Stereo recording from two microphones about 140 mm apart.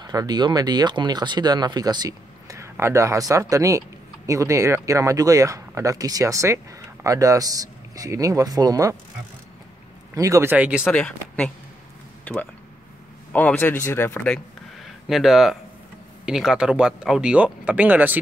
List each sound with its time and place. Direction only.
0.0 s speech: 30° right (ahead or behind)
10.1 s speech: 25° right (ahead or behind)
10.5 s speech: 10° right (ahead or behind)
10.9 s speech: 5° left (ahead or behind); by 18.2 s 10° right (ahead or behind)